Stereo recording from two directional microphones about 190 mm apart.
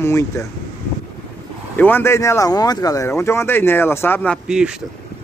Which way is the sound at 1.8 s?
10° left (ahead or behind).